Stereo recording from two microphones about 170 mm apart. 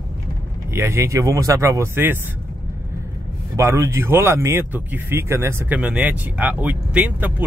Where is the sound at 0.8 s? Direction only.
15° right (ahead or behind).